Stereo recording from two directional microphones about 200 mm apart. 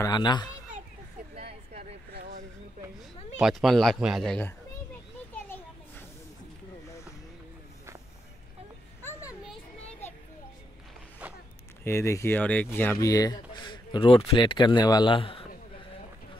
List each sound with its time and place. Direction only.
0.0 s a man's voice: 20° left (ahead or behind)
1.3 s a sound: 35° right (ahead or behind)
3.3 s speech: centre (ahead or behind)
5.3 s children playing: 10° left (ahead or behind)
11.8 s a man's voice: 15° left (ahead or behind)